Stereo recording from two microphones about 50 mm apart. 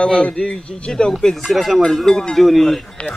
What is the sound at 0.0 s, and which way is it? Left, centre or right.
Speech, left.